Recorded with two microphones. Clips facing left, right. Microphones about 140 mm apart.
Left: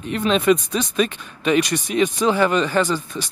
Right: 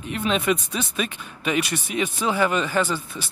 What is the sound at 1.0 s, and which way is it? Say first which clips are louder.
Speech: left 6 dB; 10° right (ahead or behind).